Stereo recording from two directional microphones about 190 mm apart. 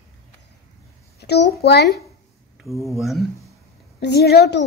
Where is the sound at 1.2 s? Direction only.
60° left (ahead or behind).